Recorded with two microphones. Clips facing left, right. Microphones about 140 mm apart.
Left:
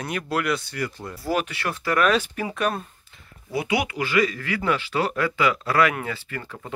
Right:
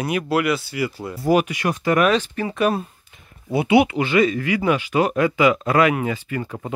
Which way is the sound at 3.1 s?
25° right (ahead or behind).